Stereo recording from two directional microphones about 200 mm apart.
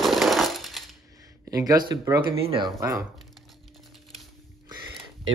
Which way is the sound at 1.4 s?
15° right (ahead or behind).